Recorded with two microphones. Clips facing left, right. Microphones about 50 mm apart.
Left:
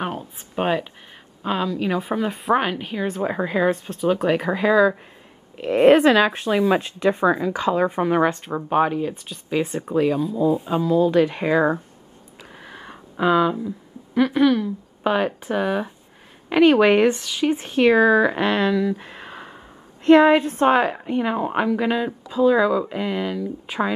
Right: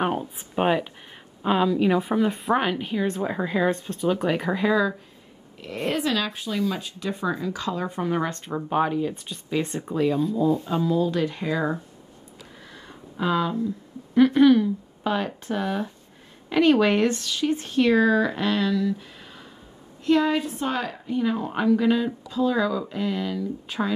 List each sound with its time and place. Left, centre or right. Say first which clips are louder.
0.0 s a woman's voice: right 3 dB; centre
5.9 s a woman's voice: left 10 dB; left
8.3 s speech: left 4 dB; centre; by 11.8 s left
12.6 s a sound: left 5 dB; left
13.3 s speech: left 6 dB; centre
14.1 s a woman's voice: right 2 dB; centre
15.0 s speech: left 5 dB; centre
18.9 s a sound: left 7 dB; left
20.1 s a woman's voice: left 8 dB; left; by 23.9 s centre